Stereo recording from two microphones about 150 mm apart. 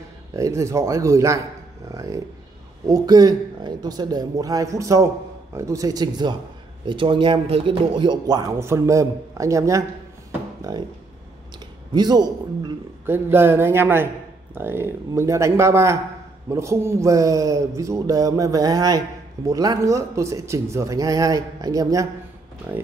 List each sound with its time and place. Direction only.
0.3 s a man's voice: 20° right (ahead or behind)
11.9 s a man's voice: 25° right (ahead or behind)
13.0 s a man's voice: 15° right (ahead or behind)